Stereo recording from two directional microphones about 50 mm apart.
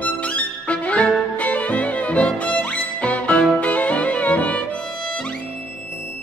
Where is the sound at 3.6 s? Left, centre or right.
Left.